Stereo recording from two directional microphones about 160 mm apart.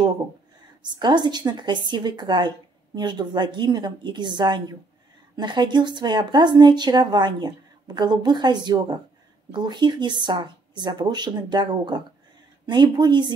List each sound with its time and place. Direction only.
0.8 s a woman's voice: 25° right (ahead or behind)